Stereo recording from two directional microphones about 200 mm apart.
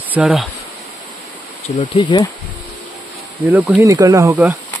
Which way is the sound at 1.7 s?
30° left (ahead or behind).